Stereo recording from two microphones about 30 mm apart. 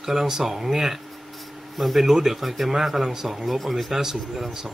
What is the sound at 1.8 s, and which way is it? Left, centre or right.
Speech, centre.